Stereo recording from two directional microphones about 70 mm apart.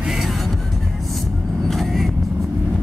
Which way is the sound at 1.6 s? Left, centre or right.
Centre.